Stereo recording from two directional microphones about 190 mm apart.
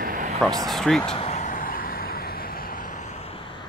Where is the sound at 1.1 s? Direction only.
35° left (ahead or behind).